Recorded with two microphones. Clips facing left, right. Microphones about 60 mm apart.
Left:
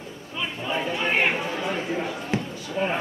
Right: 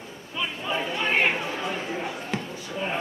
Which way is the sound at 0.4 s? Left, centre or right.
Centre.